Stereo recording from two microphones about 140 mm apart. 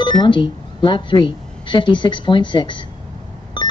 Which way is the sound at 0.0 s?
35° left (ahead or behind).